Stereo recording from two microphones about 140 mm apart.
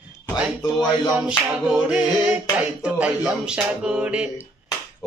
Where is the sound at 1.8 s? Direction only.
10° right (ahead or behind).